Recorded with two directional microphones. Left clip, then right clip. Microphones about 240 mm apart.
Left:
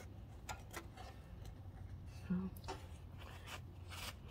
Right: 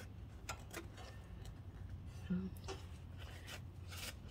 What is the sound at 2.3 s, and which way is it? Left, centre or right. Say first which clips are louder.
Speech: even; centre.